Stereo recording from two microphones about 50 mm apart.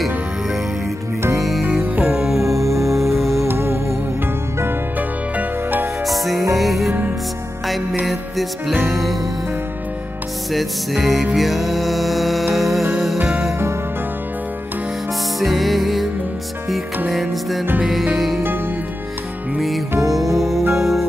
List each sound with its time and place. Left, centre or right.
2.1 s music: centre
2.4 s music: right
3.0 s music: centre
3.4 s music: right
4.9 s music: right
6.0 s music: centre
6.9 s music: right
8.0 s music: centre
10.5 s music: centre
15.4 s music: centre
17.1 s music: centre
20.3 s music: centre